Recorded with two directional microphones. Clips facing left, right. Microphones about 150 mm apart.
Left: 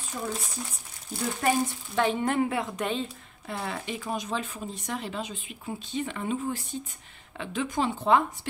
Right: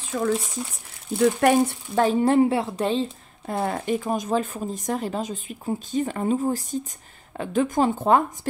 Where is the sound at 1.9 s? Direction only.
35° right (ahead or behind).